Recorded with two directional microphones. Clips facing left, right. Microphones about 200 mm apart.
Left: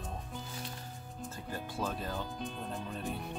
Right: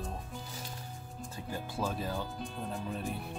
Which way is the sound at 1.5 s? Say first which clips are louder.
Right 2 dB; 10° right (ahead or behind).